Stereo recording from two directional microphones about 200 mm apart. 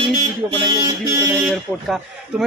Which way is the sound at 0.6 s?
15° right (ahead or behind).